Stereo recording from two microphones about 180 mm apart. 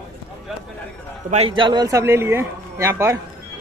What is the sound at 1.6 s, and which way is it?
A man's voice, 25° right (ahead or behind).